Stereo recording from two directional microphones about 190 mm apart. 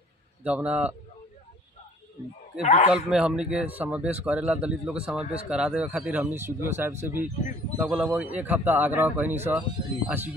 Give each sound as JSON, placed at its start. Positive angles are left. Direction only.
{"t": 0.4, "sound": "speech", "side_deg": -5}
{"t": 2.6, "sound": "a man's voice", "side_deg": 35}
{"t": 2.9, "sound": "speech", "side_deg": -5}